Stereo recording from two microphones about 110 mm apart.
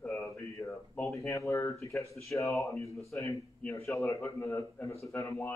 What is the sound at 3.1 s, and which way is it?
Speech, 15° left (ahead or behind).